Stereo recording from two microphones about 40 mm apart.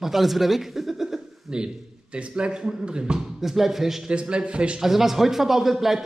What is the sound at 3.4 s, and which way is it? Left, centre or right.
Speech, centre.